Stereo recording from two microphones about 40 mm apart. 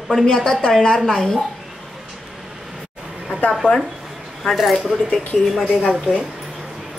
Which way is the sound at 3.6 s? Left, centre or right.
Right.